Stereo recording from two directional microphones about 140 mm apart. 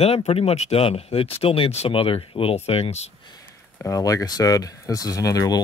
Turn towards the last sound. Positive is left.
turn(degrees=25)  # may be behind; listen again after turning